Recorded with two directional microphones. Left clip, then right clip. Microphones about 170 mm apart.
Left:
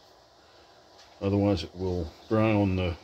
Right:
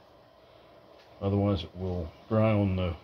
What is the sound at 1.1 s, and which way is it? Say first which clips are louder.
Speech: left 3 dB; 45° left (ahead or behind).